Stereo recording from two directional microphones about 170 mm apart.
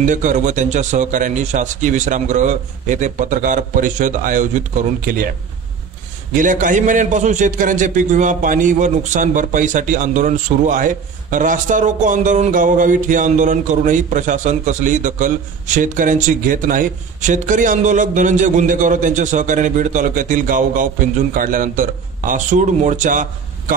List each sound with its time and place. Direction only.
0.0 s a man's voice: 50° right (ahead or behind)
6.3 s a man's voice: 50° right (ahead or behind)